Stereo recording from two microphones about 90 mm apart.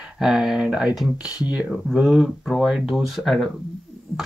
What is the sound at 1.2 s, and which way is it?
Speech, 40° left (ahead or behind).